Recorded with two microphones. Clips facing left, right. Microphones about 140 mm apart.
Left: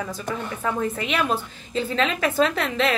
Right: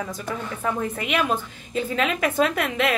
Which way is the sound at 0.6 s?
10° right (ahead or behind).